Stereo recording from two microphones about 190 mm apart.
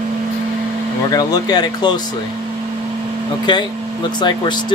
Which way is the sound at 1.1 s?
20° left (ahead or behind).